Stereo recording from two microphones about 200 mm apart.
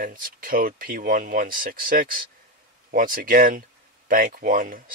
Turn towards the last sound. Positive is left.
turn(degrees=-45)  # may be behind; listen again after turning